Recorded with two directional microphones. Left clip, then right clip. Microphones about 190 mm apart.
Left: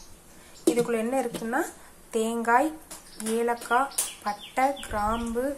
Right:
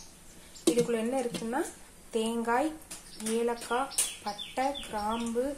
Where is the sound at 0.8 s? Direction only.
Centre (ahead or behind).